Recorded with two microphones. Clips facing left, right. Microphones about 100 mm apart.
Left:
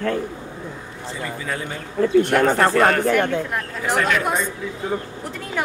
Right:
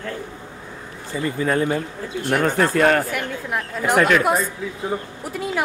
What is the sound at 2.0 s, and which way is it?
Speech, 60° left (ahead or behind).